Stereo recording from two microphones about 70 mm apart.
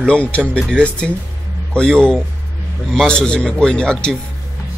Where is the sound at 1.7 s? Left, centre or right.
Centre.